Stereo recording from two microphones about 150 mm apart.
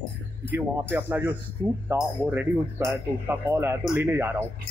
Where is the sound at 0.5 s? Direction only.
15° right (ahead or behind).